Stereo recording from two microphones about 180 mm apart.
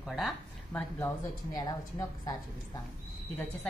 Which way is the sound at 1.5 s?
20° left (ahead or behind).